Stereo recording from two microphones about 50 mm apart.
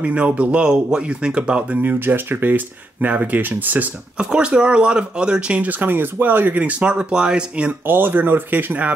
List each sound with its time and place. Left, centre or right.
0.0 s speech: right
1.7 s speech: right
4.2 s speech: centre
5.6 s speech: right
7.8 s speech: right